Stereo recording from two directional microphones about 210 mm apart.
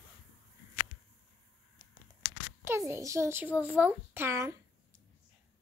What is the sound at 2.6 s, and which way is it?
A child's voice, 10° right (ahead or behind).